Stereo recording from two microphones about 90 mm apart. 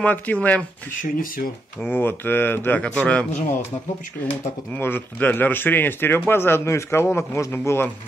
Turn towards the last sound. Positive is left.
turn(degrees=25)  # may be behind; listen again after turning